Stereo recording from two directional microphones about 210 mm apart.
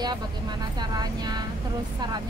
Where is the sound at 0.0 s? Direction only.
20° right (ahead or behind).